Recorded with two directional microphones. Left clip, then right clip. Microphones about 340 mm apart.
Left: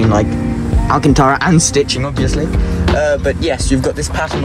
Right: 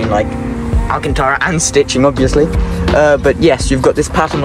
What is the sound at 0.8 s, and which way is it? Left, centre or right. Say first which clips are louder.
Speech: left 3 dB; centre.